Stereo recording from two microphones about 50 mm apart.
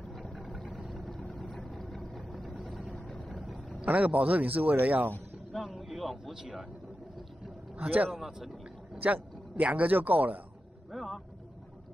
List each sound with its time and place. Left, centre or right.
0.1 s boat: centre
1.4 s vehicle: centre
1.7 s vehicle: centre
3.8 s a man's voice: right
5.6 s a man's voice: centre
7.7 s a man's voice: right
10.9 s speech: centre